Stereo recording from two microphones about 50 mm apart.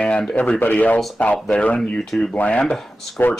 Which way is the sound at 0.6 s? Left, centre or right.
Left.